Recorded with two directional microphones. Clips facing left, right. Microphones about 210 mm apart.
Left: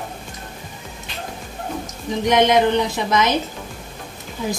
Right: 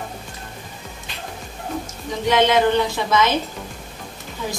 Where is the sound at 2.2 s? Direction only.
20° left (ahead or behind).